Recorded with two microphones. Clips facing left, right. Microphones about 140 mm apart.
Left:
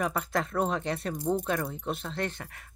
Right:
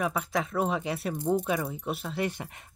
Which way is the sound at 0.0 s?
Centre (ahead or behind).